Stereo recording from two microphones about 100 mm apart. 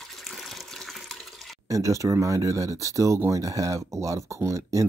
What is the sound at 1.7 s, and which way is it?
Speech, 30° right (ahead or behind).